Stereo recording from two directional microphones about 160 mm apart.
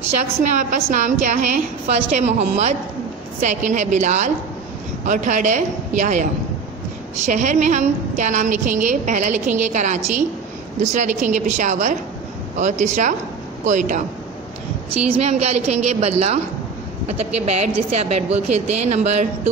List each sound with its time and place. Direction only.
0.4 s a woman's voice: 50° right (ahead or behind)
7.2 s a woman's voice: 50° right (ahead or behind)
15.1 s a woman's voice: 40° right (ahead or behind)